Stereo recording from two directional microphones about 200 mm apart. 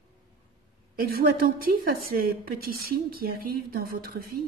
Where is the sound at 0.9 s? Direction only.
50° right (ahead or behind).